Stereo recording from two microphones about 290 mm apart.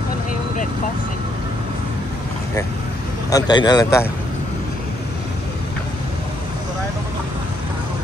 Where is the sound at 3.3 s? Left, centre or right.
Centre.